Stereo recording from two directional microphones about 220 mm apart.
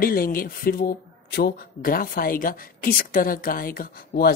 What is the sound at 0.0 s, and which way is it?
Speech, 40° left (ahead or behind).